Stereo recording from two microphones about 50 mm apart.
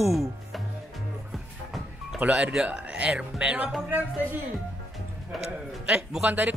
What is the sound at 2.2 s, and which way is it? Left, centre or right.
Speech, right.